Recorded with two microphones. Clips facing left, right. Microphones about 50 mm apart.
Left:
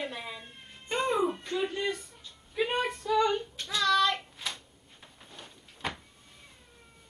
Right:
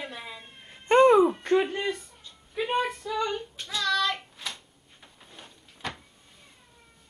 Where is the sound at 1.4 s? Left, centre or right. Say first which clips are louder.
Right 8 dB; right.